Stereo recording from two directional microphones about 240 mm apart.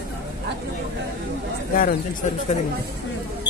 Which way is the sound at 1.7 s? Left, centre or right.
Left.